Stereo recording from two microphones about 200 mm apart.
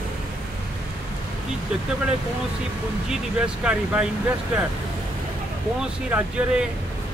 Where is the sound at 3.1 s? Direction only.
5° right (ahead or behind).